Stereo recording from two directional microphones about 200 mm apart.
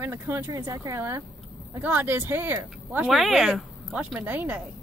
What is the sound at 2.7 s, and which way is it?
Speech, centre (ahead or behind).